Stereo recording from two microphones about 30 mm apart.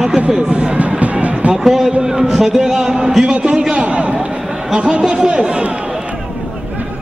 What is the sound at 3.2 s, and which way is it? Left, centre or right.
Speech, right.